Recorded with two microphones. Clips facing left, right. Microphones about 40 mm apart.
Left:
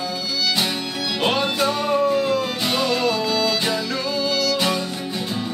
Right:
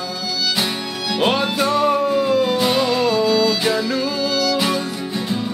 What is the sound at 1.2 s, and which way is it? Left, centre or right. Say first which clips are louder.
Music: right 2 dB; centre.